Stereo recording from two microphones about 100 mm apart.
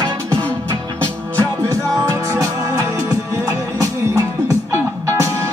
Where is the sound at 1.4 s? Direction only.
35° right (ahead or behind).